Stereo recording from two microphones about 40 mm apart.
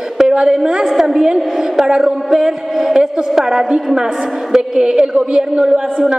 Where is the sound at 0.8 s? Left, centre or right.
Centre.